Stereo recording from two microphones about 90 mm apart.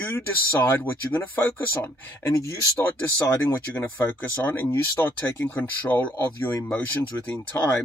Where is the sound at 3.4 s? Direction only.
20° left (ahead or behind).